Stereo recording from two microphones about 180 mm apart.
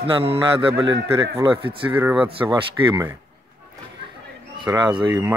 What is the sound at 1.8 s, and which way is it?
Speech, 10° right (ahead or behind).